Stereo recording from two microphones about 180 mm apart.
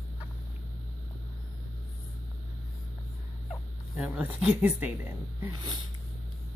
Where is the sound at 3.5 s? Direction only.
5° right (ahead or behind).